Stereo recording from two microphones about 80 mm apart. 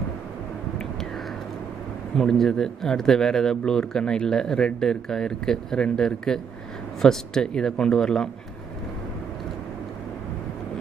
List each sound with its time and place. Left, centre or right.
2.1 s speech: centre